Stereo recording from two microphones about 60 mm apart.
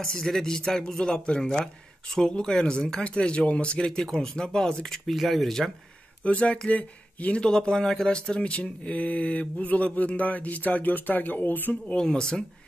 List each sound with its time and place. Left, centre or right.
0.0 s speech: centre
6.2 s speech: left
11.9 s speech: centre